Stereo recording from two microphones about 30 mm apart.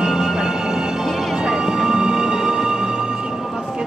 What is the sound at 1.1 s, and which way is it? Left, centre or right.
Music, centre.